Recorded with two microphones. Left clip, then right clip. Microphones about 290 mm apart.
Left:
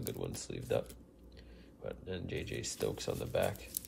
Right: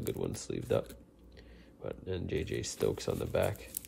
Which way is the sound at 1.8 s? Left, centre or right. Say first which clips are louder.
Right 3 dB; right.